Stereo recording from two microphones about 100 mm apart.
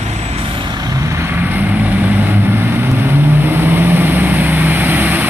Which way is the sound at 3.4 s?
20° right (ahead or behind).